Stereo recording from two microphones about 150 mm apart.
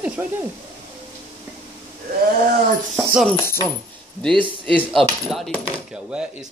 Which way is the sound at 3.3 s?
15° left (ahead or behind).